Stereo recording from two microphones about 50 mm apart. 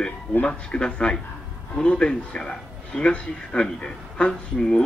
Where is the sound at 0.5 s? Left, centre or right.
Centre.